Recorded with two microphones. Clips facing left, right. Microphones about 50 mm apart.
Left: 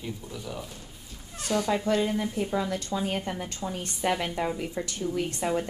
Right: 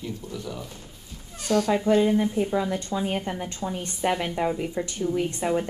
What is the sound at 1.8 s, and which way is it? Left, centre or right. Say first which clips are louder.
Speech: right 5 dB; centre.